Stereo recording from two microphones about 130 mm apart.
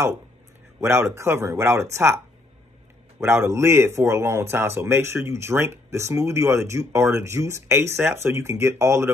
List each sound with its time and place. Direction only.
0.7 s speech: 20° right (ahead or behind)
3.2 s speech: 20° right (ahead or behind)